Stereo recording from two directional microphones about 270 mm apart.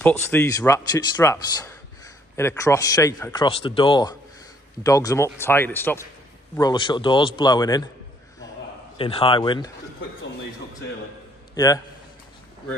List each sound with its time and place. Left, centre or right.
0.0 s speech: centre
8.9 s a man's voice: centre
11.5 s a man's voice: centre